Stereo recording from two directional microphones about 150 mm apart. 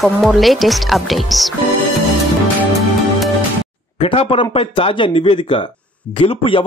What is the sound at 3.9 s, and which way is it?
Speech, 35° left (ahead or behind).